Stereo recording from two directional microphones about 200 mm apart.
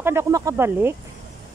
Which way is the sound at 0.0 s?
10° right (ahead or behind).